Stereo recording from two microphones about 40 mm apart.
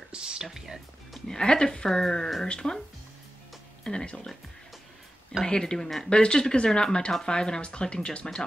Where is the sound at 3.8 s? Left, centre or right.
Left.